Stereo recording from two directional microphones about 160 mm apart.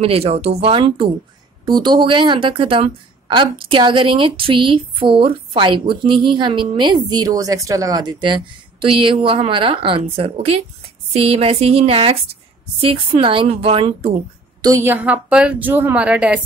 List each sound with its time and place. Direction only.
0.0 s a woman's voice: 40° right (ahead or behind)
14.6 s a woman's voice: 20° right (ahead or behind)